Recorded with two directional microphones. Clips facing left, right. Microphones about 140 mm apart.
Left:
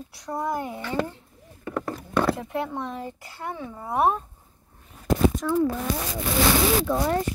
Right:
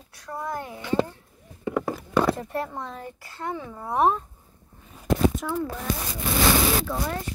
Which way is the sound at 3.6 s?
Centre (ahead or behind).